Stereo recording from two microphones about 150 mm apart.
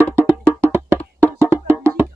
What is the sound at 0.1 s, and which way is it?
Music, 15° right (ahead or behind).